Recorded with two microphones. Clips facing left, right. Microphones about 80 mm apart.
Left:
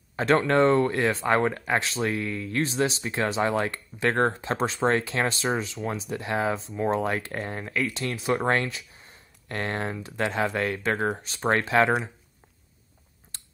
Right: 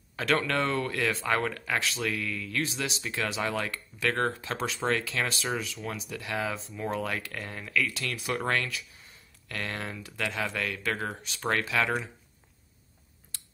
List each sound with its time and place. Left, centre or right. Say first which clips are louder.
0.1 s speech: left 6 dB; left